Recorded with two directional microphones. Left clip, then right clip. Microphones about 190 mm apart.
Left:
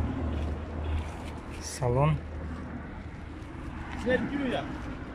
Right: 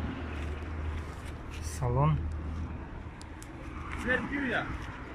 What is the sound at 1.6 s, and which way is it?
Speech, 5° left (ahead or behind).